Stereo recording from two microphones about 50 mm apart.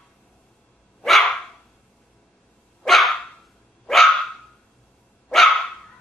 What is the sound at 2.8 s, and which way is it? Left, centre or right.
Dog, centre.